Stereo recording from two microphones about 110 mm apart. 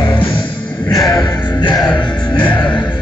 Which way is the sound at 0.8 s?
30° left (ahead or behind).